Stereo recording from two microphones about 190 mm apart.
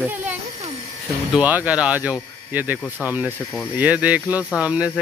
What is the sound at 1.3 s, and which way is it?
Speech, 10° right (ahead or behind).